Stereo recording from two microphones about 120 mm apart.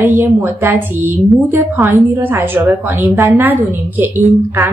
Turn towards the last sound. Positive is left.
turn(degrees=-15)  # may be behind; listen again after turning